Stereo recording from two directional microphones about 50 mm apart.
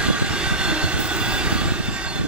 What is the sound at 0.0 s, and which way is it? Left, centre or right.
Train, right.